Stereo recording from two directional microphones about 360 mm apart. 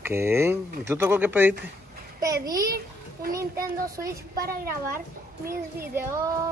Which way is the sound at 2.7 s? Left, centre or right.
Right.